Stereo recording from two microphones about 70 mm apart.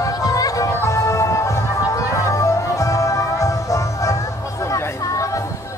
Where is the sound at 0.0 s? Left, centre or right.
Left.